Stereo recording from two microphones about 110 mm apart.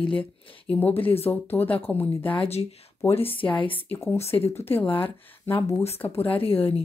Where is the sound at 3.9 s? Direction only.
25° left (ahead or behind).